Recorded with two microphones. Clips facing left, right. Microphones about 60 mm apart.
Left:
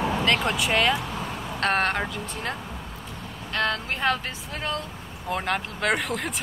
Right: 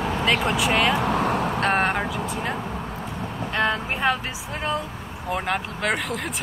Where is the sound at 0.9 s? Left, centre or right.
Right.